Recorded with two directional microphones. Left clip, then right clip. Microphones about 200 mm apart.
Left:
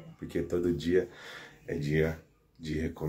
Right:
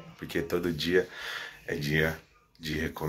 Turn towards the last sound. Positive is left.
turn(degrees=5)  # may be behind; listen again after turning